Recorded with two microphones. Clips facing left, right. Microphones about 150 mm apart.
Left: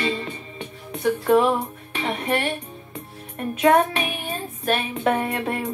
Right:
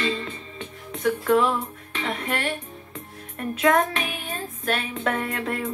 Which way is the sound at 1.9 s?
20° left (ahead or behind).